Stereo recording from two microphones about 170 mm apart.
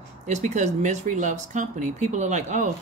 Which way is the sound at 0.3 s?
45° right (ahead or behind).